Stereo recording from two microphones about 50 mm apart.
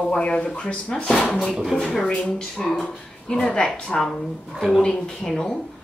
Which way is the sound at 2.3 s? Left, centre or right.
Centre.